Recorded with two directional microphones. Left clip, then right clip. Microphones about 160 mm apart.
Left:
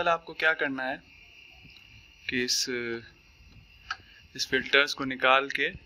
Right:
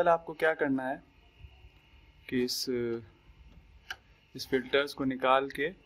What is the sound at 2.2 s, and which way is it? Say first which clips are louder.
Speech: left 4 dB; 25° right (ahead or behind).